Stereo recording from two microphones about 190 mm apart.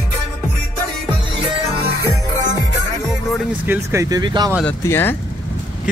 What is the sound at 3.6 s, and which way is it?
Speech, 10° right (ahead or behind).